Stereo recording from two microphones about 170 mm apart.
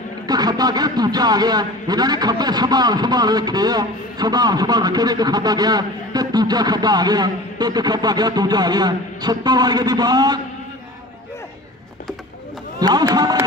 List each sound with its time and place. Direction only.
0.3 s speech: 25° right (ahead or behind)
12.7 s speech: 25° right (ahead or behind)